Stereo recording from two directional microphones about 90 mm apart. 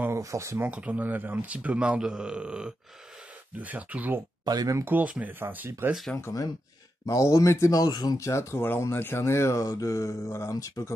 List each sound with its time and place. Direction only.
0.1 s speech: 35° right (ahead or behind)
0.7 s a man's voice: 15° right (ahead or behind)
4.5 s speech: 45° right (ahead or behind)
4.7 s speech: 20° right (ahead or behind)
6.1 s speech: 30° left (ahead or behind)
7.8 s speech: 50° left (ahead or behind)
8.3 s speech: 30° left (ahead or behind)